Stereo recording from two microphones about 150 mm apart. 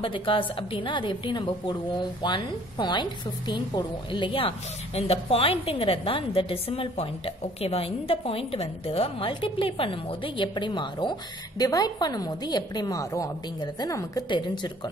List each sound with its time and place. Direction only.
0.0 s a woman's voice: 35° left (ahead or behind)